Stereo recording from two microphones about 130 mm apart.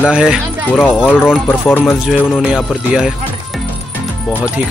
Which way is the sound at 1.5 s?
15° left (ahead or behind).